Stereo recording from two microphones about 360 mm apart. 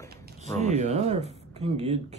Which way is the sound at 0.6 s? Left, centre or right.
Centre.